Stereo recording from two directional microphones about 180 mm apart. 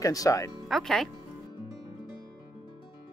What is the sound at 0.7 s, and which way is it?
Speech, centre (ahead or behind).